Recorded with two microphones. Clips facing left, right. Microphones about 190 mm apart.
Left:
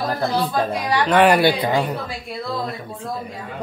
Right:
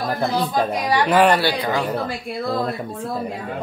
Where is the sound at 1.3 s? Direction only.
20° left (ahead or behind).